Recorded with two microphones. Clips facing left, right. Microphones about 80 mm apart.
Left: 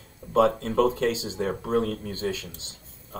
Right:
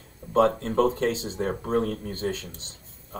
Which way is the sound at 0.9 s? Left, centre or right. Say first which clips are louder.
Even; left.